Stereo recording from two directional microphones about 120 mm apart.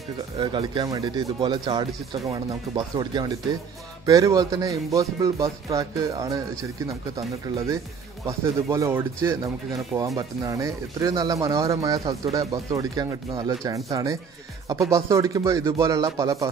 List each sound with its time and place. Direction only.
0.4 s speech: 40° right (ahead or behind)
4.0 s speech: 25° right (ahead or behind)